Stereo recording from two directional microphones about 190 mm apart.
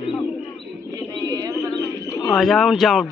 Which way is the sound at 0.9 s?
20° right (ahead or behind).